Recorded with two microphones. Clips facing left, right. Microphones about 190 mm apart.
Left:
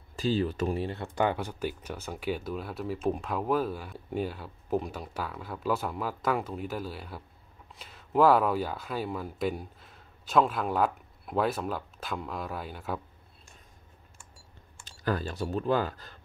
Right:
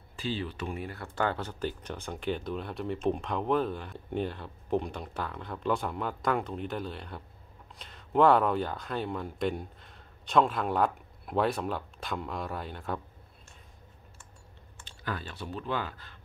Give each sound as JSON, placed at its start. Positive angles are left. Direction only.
{"t": 0.1, "sound": "speech", "side_deg": 40}
{"t": 0.8, "sound": "speech", "side_deg": 20}
{"t": 14.9, "sound": "speech", "side_deg": 40}